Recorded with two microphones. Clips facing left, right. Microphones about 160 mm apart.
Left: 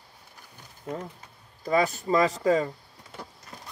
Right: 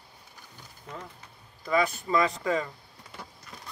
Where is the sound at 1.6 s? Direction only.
40° left (ahead or behind).